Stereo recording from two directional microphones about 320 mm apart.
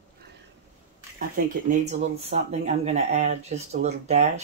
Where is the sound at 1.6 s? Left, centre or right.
Right.